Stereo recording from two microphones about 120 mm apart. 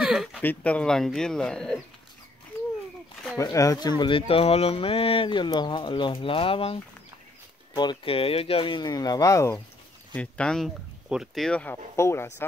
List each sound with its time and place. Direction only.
0.0 s a sound: 5° right (ahead or behind)
0.4 s speech: 15° left (ahead or behind)
3.3 s speech: 30° left (ahead or behind)
4.3 s speech: 55° left (ahead or behind)
7.7 s speech: 40° left (ahead or behind)
10.1 s speech: 10° left (ahead or behind)
11.6 s speech: 20° left (ahead or behind)